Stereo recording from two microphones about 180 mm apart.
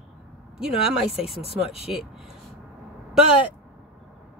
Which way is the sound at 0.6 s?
5° right (ahead or behind).